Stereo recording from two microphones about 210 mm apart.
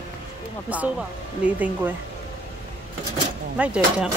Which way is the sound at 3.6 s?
5° right (ahead or behind).